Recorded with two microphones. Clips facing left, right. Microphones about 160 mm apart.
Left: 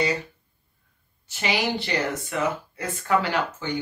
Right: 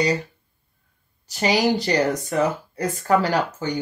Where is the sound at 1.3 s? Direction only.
40° right (ahead or behind).